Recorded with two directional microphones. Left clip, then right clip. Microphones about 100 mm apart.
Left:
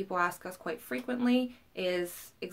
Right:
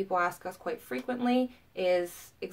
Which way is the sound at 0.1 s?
40° left (ahead or behind).